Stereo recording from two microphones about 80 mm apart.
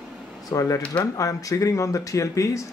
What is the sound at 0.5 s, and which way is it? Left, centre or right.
Speech, left.